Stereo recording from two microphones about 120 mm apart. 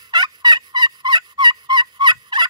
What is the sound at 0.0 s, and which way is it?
Fowl, 35° right (ahead or behind).